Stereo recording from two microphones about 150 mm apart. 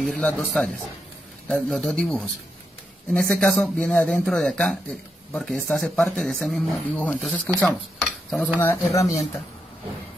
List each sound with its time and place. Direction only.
0.0 s speech: 10° left (ahead or behind)
8.9 s speech: 20° left (ahead or behind)